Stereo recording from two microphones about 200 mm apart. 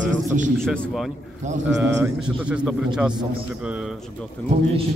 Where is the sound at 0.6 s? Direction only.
Centre (ahead or behind).